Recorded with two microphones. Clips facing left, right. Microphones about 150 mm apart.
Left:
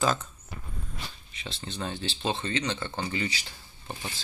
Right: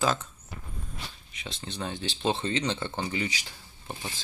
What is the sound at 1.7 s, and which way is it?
Speech, 15° right (ahead or behind).